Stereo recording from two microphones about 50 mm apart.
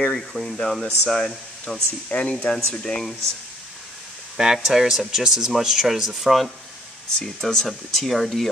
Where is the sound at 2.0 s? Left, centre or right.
Left.